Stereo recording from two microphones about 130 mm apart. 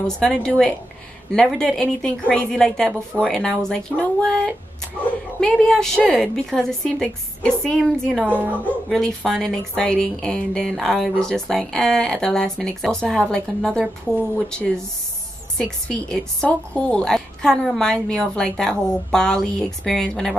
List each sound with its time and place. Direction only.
0.0 s speech: 5° left (ahead or behind)